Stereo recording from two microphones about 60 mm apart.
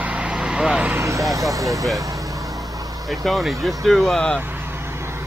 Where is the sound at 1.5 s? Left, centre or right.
Right.